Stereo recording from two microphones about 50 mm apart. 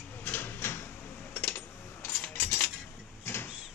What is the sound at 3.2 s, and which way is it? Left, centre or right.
Vehicle, left.